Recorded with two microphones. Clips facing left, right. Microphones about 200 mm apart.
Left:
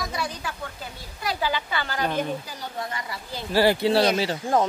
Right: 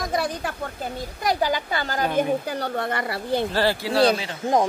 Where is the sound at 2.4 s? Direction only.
60° right (ahead or behind).